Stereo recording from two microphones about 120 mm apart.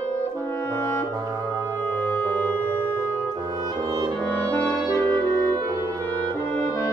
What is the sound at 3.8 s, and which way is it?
Music, 35° right (ahead or behind).